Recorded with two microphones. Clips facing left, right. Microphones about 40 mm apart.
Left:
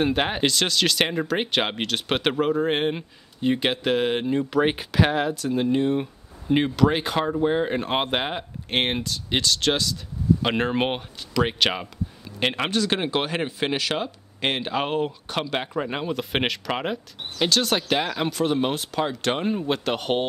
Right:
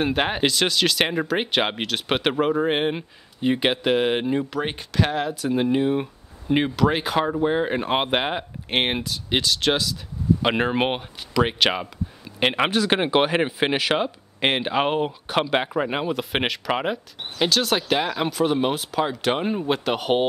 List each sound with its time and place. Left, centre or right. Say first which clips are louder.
0.0 s speech: right 1 dB; centre
4.5 s speech: left 5 dB; centre
5.4 s speech: right 1 dB; centre
12.3 s speech: right 4 dB; centre
16.1 s speech: right 1 dB; centre